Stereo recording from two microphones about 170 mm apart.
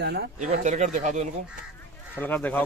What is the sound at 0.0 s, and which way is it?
Speech, 70° right (ahead or behind).